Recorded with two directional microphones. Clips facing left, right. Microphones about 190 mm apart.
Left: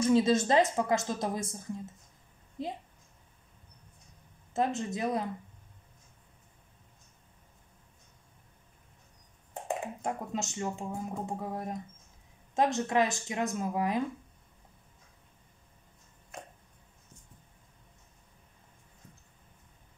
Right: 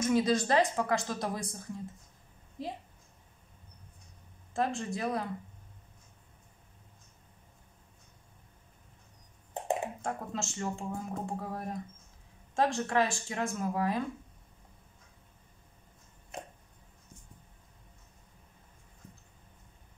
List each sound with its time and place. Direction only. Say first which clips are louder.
0.0 s a woman's voice: left 3 dB; 25° left (ahead or behind)
4.6 s a woman's voice: left 2 dB; 20° left (ahead or behind)
10.0 s a woman's voice: left 2 dB; 15° left (ahead or behind)